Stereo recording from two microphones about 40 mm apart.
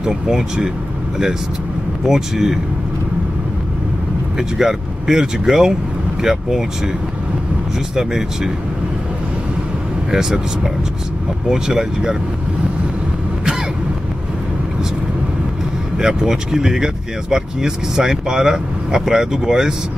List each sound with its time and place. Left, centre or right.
0.0 s speech: centre
2.0 s speech: centre
4.4 s speech: centre
7.9 s speech: centre
10.1 s speech: centre
16.0 s speech: centre